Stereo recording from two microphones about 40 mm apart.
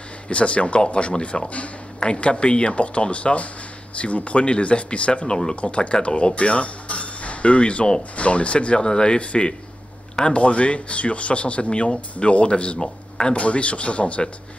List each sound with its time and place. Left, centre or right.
0.3 s speech: left
5.2 s speech: centre
5.6 s speech: left
8.7 s speech: centre
12.7 s speech: centre
13.3 s speech: left